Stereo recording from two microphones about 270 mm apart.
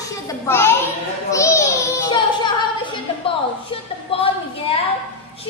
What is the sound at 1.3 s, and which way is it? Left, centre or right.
Child singing, centre.